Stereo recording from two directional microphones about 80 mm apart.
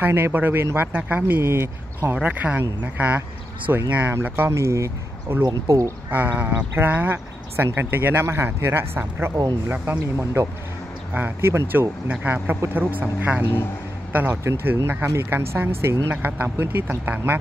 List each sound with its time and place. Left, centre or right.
0.0 s speech: right
1.2 s speech: right
6.0 s speech: right
12.1 s speech: right